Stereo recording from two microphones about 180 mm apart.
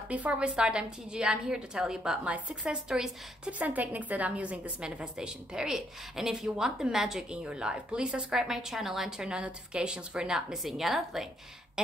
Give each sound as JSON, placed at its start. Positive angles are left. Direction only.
{"t": 0.1, "sound": "a woman's voice", "side_deg": -10}